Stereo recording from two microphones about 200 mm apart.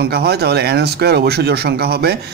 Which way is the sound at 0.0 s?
55° right (ahead or behind).